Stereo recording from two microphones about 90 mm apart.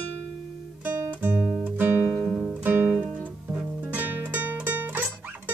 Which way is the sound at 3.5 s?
20° right (ahead or behind).